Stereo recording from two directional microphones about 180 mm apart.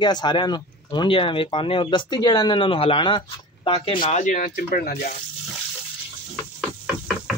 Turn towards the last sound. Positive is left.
turn(degrees=-5)  # may be behind; listen again after turning